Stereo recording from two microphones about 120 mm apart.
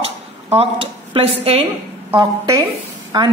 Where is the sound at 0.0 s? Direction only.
55° right (ahead or behind).